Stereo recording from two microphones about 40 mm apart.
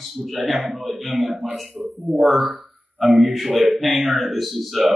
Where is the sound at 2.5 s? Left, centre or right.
Right.